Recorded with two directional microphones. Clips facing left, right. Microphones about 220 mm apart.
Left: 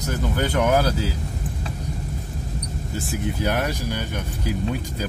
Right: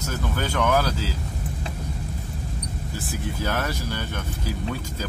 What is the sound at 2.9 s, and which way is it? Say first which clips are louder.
Speech: left 4 dB; 15° left (ahead or behind).